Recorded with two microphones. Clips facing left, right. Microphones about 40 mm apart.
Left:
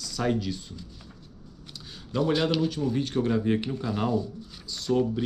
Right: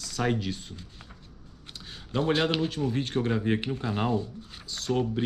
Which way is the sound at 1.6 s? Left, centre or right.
Right.